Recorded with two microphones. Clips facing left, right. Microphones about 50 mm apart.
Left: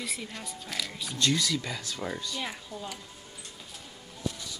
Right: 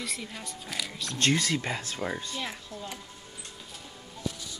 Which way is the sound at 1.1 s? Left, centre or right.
Right.